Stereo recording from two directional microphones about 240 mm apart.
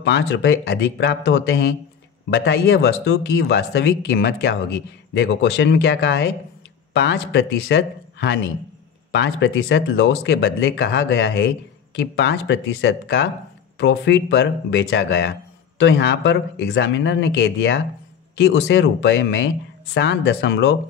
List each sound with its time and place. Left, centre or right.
0.0 s speech: left